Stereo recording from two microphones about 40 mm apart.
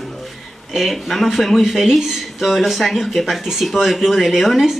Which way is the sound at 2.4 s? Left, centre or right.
Centre.